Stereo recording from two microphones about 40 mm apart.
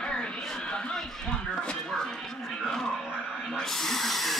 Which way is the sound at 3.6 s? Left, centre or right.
Centre.